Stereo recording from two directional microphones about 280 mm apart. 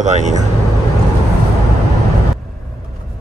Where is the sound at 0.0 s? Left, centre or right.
Right.